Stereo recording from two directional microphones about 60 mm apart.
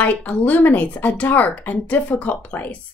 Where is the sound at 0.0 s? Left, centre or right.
Left.